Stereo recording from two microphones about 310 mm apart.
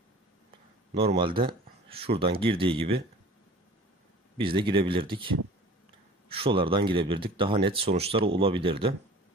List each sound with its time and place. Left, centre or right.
0.9 s speech: centre
4.4 s speech: centre